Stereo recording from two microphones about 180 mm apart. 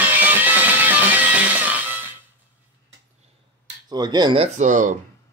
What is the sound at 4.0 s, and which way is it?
Speech, 25° right (ahead or behind).